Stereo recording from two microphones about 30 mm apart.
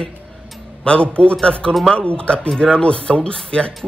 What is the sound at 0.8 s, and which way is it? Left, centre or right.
Speech, left.